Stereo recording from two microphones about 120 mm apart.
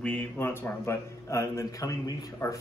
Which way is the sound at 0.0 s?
15° left (ahead or behind).